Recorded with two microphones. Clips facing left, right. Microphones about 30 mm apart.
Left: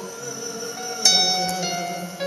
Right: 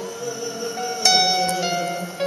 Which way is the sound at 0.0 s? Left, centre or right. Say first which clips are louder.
Right 4 dB; right.